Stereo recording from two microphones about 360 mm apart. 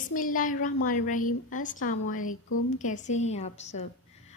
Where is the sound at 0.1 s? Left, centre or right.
Left.